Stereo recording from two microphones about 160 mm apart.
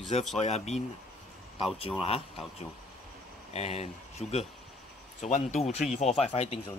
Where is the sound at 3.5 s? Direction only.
40° left (ahead or behind).